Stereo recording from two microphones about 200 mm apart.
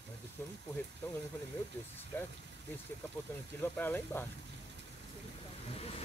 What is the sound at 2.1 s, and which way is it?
Speech, 10° left (ahead or behind).